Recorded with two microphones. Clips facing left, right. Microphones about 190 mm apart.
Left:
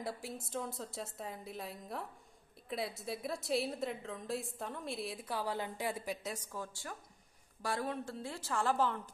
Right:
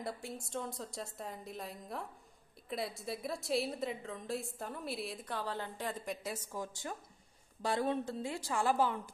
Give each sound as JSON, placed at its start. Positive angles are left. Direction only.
{"t": 0.0, "sound": "a woman's voice", "side_deg": 0}
{"t": 6.2, "sound": "a woman's voice", "side_deg": -10}